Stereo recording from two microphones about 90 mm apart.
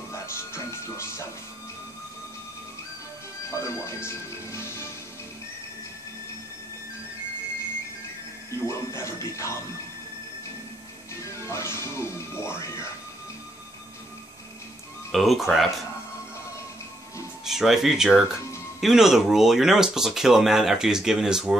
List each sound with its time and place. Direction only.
0.1 s music: 30° left (ahead or behind)
3.4 s speech: 30° left (ahead or behind)
8.5 s speech: 35° left (ahead or behind)
11.2 s music: 30° left (ahead or behind)
12.4 s speech: 30° left (ahead or behind)
15.0 s speech: centre (ahead or behind)
17.5 s speech: 5° right (ahead or behind)